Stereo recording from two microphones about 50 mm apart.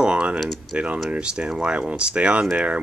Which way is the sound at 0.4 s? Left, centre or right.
Centre.